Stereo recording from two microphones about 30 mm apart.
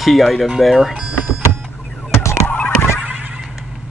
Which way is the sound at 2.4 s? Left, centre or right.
Left.